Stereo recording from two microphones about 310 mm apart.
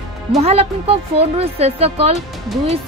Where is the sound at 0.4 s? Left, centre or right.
Centre.